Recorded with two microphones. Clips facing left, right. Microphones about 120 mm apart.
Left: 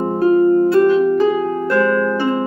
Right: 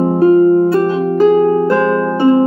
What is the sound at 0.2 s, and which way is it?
Harp, 30° right (ahead or behind).